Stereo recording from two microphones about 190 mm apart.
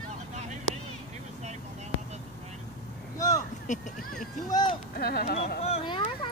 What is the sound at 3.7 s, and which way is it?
Speech, 40° left (ahead or behind).